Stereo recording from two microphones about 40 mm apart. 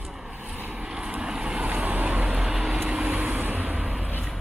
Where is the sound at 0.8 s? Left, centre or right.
Right.